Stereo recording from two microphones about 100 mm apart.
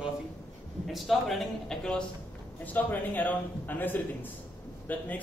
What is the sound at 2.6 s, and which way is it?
A man's voice, 15° left (ahead or behind).